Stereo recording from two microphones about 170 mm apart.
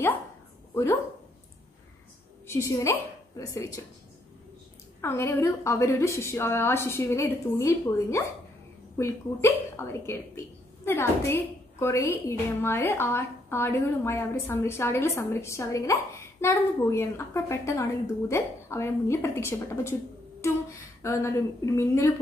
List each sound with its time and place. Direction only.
2.4 s a woman's voice: 15° left (ahead or behind)
5.0 s a woman's voice: 15° left (ahead or behind)